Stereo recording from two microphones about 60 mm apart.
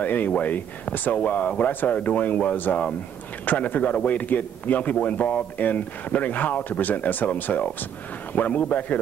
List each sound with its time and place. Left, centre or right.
0.0 s a man's voice: left